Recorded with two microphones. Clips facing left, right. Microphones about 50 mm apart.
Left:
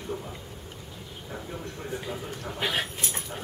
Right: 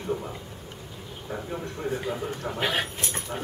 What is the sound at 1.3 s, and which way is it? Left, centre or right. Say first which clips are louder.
A man's voice: right 5 dB; centre.